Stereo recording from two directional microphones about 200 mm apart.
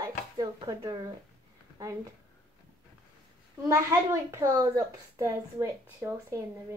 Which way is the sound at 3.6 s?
15° right (ahead or behind).